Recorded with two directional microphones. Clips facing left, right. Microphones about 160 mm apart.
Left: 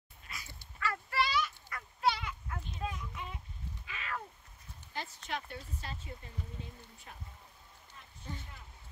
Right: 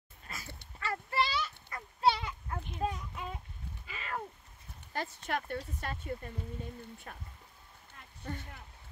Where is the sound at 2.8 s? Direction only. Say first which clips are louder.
Right 5 dB; 40° right (ahead or behind).